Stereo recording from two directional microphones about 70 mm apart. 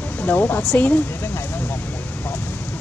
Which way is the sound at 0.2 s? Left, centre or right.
Left.